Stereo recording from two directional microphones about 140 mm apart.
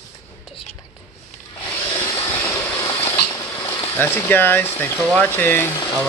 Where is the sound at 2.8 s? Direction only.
40° left (ahead or behind).